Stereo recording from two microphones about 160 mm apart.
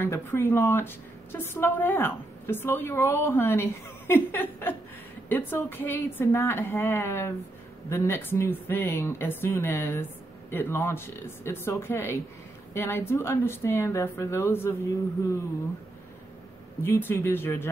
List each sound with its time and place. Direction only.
0.0 s a woman's voice: 15° left (ahead or behind)
16.8 s a woman's voice: 15° left (ahead or behind)